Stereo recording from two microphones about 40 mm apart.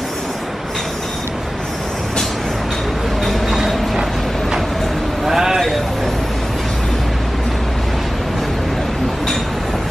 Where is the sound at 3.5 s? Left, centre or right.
Centre.